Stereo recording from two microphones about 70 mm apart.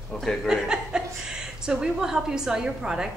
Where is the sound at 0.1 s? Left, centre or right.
Centre.